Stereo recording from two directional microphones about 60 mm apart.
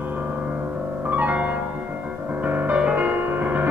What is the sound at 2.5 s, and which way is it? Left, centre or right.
Music, right.